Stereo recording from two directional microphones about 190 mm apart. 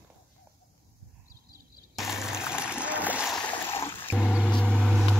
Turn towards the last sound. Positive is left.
turn(degrees=0)  # may be behind; listen again after turning